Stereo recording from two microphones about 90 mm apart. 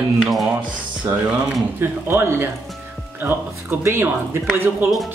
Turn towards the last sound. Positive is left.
turn(degrees=-20)  # may be behind; listen again after turning